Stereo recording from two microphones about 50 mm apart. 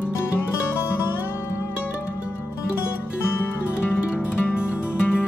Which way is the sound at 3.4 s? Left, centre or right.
Left.